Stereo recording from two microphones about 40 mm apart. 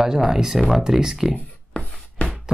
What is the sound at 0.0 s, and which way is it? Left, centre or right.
Speech, centre.